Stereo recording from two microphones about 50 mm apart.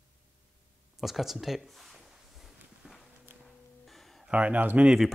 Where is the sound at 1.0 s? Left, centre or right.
Centre.